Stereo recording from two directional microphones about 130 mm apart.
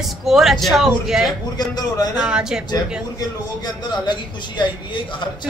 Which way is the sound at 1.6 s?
30° left (ahead or behind).